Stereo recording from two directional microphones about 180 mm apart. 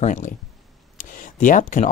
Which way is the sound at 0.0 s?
45° left (ahead or behind).